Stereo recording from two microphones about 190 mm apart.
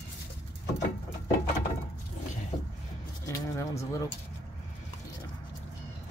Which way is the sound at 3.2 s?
15° left (ahead or behind).